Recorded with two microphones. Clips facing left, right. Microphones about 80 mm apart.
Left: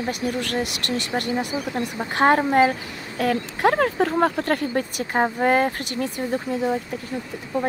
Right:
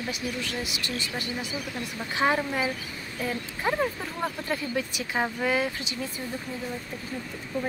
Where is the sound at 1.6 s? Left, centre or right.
Left.